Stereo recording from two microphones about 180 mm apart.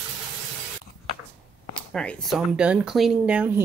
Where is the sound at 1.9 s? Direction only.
Centre (ahead or behind).